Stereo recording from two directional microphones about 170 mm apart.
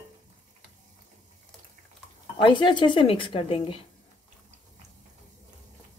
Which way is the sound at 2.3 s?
25° left (ahead or behind).